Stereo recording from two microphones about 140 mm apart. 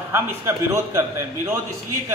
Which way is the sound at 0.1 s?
20° right (ahead or behind).